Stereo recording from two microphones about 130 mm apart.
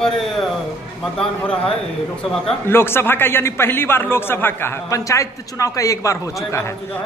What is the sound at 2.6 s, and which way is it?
A man's voice, 15° left (ahead or behind).